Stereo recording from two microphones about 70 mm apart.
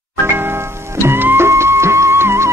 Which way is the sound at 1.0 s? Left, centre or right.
Right.